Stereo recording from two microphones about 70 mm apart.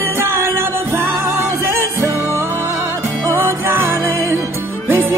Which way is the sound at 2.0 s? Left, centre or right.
Right.